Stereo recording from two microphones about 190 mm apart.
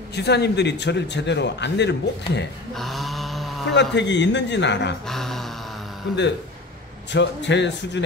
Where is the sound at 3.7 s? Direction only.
65° left (ahead or behind).